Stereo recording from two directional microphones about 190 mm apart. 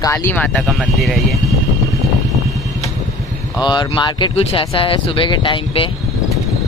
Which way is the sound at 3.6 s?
25° left (ahead or behind).